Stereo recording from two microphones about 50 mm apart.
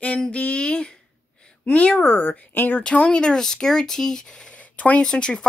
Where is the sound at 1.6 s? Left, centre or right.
Left.